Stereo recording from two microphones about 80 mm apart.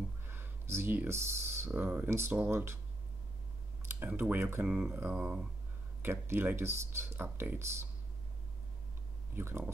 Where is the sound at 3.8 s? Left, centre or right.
Right.